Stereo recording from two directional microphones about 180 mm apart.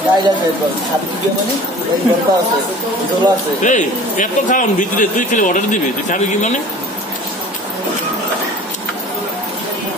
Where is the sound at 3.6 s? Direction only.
45° left (ahead or behind).